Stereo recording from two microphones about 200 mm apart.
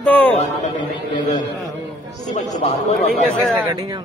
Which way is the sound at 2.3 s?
35° left (ahead or behind).